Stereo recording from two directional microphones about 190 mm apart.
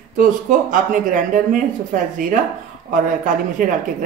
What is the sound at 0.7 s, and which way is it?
Speech, 45° right (ahead or behind).